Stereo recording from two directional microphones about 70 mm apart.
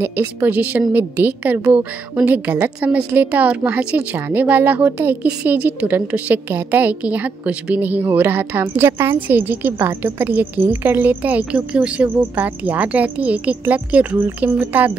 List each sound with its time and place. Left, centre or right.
0.4 s a woman's voice: right